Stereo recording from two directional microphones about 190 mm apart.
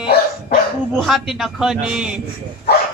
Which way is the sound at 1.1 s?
Centre (ahead or behind).